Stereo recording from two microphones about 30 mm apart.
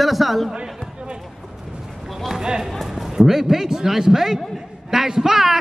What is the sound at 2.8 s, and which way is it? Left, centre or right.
A man's voice, centre.